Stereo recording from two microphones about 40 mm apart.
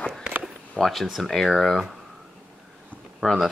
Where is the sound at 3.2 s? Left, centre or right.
Left.